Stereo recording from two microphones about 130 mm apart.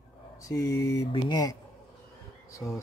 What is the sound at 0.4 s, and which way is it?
Speech, 25° left (ahead or behind).